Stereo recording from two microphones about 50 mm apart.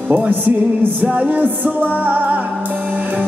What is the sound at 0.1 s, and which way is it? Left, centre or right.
Speech, right.